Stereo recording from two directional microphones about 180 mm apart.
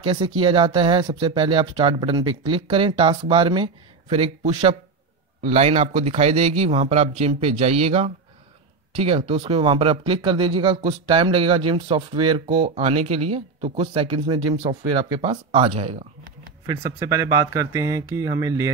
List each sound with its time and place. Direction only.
0.0 s a man's voice: 30° right (ahead or behind)
16.6 s speech: 15° right (ahead or behind)